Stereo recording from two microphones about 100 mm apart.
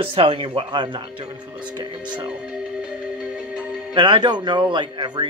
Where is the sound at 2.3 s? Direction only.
10° right (ahead or behind).